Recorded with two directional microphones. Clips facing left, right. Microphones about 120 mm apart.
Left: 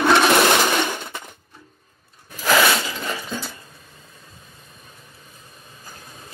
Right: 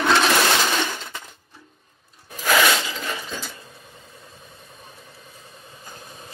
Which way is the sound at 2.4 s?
Centre (ahead or behind).